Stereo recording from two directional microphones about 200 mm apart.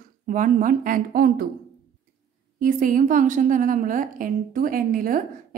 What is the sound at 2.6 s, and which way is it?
A woman's voice, 40° right (ahead or behind).